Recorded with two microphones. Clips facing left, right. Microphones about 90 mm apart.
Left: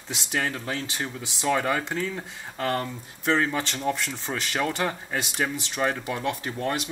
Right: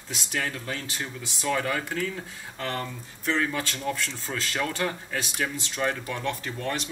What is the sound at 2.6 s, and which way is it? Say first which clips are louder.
Speech: left 5 dB; 10° left (ahead or behind).